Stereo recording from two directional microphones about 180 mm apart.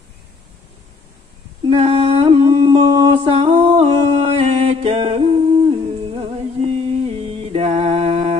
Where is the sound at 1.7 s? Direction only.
35° right (ahead or behind).